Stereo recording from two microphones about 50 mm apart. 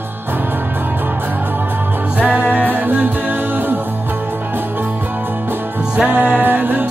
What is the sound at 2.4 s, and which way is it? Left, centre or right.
Music, left.